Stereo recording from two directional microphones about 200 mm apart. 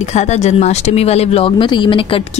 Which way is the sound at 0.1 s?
35° left (ahead or behind).